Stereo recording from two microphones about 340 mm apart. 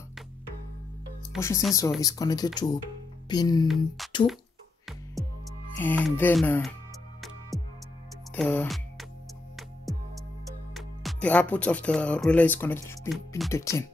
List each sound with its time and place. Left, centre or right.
1.3 s speech: centre
2.0 s speech: centre
3.6 s speech: centre
5.8 s speech: centre
8.4 s speech: centre
10.7 s speech: centre